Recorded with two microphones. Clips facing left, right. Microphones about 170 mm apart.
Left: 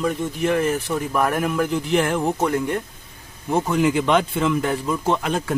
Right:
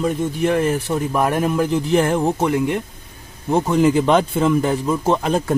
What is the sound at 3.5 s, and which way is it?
Speech, 30° right (ahead or behind).